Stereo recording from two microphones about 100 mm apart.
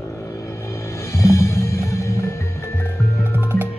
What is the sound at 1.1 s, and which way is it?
Music, 30° left (ahead or behind).